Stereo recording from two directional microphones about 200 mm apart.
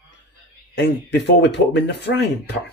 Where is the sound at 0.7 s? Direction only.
60° left (ahead or behind).